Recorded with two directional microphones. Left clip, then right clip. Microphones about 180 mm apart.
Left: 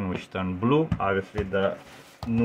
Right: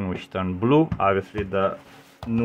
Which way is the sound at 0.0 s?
30° right (ahead or behind).